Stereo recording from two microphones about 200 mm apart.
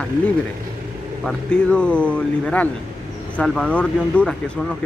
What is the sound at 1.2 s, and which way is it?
Speech, 5° left (ahead or behind).